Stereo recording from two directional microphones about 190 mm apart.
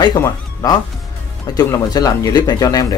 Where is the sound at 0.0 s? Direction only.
20° left (ahead or behind).